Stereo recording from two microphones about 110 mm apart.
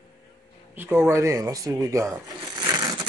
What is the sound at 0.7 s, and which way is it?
Speech, 20° right (ahead or behind).